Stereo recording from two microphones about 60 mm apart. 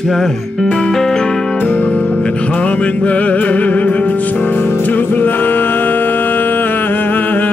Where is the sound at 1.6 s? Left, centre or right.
Left.